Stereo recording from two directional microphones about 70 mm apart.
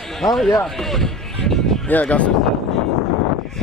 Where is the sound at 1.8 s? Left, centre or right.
Left.